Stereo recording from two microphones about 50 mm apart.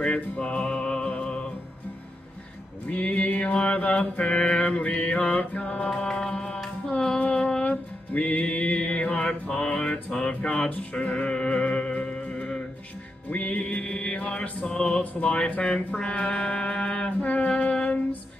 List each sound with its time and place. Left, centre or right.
0.0 s music: left
2.9 s music: left
3.5 s mantra: left
5.9 s music: centre
7.6 s music: left